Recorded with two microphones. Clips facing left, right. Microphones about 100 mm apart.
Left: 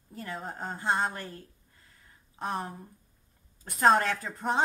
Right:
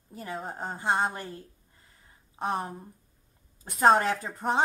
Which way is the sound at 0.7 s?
15° right (ahead or behind).